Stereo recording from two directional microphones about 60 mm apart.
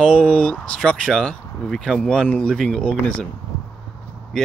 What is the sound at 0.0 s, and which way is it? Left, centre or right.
Speech, centre.